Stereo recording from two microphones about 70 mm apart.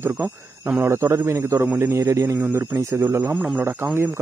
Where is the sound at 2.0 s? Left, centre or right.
Right.